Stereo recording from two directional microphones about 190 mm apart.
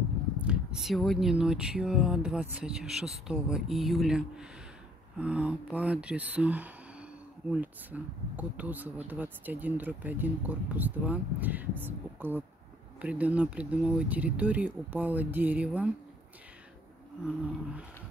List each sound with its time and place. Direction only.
0.4 s speech: 5° right (ahead or behind)